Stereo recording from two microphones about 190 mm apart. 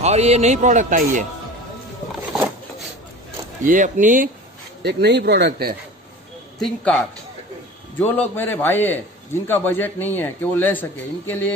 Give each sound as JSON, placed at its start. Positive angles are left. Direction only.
{"t": 0.0, "sound": "a man's voice", "side_deg": -35}
{"t": 3.6, "sound": "speech", "side_deg": -45}
{"t": 4.8, "sound": "speech", "side_deg": -60}
{"t": 6.6, "sound": "a man's voice", "side_deg": 5}